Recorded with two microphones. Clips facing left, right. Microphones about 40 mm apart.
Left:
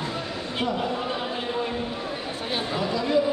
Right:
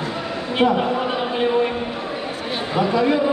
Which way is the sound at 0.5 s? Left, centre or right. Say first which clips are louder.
Right 10 dB; right.